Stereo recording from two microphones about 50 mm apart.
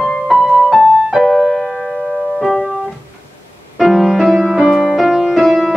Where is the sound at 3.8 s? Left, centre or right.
Centre.